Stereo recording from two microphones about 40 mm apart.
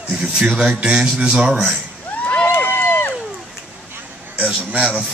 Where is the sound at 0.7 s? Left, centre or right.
Right.